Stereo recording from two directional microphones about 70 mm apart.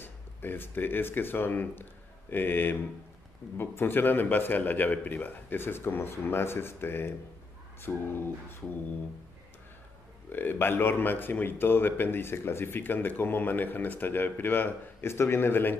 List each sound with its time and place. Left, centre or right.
0.0 s speech: left
10.3 s speech: left